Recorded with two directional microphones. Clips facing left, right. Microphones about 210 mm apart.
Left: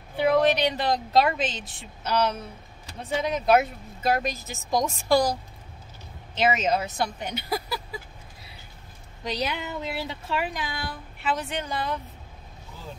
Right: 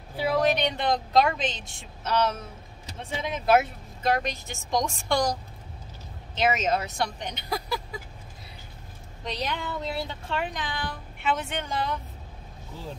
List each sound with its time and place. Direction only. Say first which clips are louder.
0.4 s speech: left 2 dB; centre (ahead or behind)
9.2 s speech: left 2 dB; 5° left (ahead or behind)